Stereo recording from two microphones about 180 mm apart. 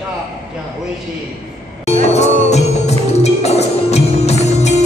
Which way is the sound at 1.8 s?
35° left (ahead or behind).